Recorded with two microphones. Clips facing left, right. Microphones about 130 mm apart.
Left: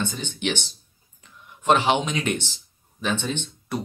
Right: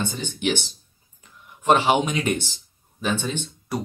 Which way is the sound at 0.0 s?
10° right (ahead or behind).